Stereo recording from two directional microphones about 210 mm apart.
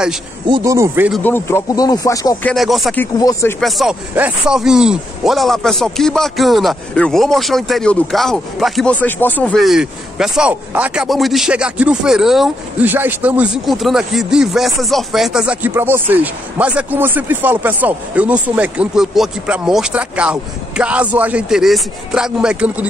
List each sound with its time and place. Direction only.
0.5 s speech: 15° right (ahead or behind)
1.2 s speech: 10° left (ahead or behind)
2.4 s speech: centre (ahead or behind)
3.2 s speech: 15° left (ahead or behind)
3.6 s speech: centre (ahead or behind)